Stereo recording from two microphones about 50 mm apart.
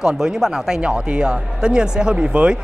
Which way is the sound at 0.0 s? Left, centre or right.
Centre.